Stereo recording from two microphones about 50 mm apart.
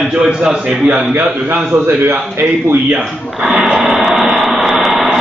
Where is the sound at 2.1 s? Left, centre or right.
Right.